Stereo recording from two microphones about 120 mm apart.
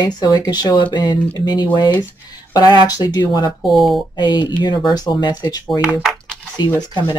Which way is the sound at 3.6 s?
Centre (ahead or behind).